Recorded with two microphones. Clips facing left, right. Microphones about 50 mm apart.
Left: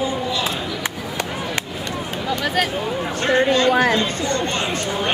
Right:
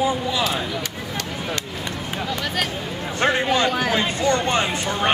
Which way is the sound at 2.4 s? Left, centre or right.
Centre.